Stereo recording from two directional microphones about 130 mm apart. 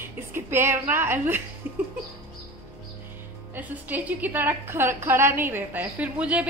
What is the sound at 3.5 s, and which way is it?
A woman's voice, 15° right (ahead or behind).